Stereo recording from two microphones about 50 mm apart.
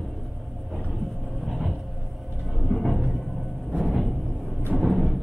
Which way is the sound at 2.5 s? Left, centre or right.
Centre.